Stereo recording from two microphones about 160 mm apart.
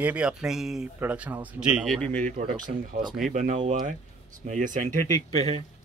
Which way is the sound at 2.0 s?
10° left (ahead or behind).